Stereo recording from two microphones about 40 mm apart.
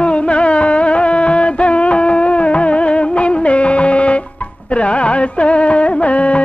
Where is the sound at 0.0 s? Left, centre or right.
Left.